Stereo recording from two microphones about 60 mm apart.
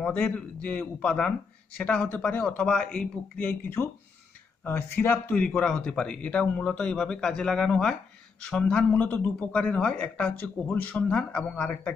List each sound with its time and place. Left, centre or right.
0.6 s a man's voice: left
3.3 s speech: left
5.3 s a man's voice: centre
8.9 s a man's voice: left
10.4 s a man's voice: left